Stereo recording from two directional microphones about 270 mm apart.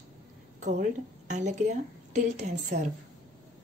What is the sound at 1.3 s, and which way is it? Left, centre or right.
A woman's voice, right.